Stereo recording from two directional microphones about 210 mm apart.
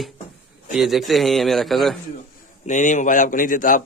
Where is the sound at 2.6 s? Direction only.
35° left (ahead or behind).